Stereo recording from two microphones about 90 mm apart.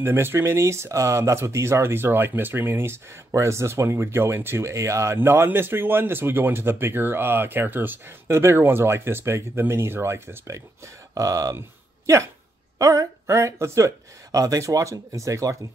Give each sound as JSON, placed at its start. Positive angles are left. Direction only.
{"t": 0.0, "sound": "speech", "side_deg": -25}
{"t": 12.7, "sound": "speech", "side_deg": -40}